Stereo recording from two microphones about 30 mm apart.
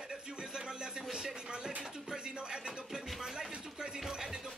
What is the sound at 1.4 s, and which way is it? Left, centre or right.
Speech, right.